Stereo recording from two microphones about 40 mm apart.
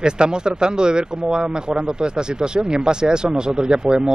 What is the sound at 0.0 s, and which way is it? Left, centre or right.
Speech, right.